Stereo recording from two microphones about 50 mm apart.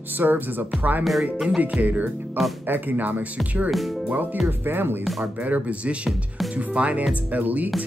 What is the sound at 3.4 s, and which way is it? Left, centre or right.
Speech, right.